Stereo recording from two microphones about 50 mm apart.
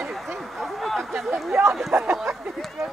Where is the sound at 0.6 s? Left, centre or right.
Centre.